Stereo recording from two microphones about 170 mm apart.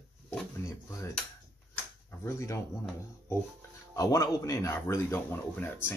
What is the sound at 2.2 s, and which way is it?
Speech, 15° left (ahead or behind).